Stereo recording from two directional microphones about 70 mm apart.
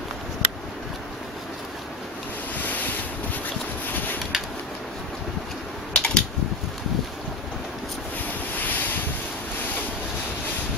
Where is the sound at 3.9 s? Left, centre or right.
Left.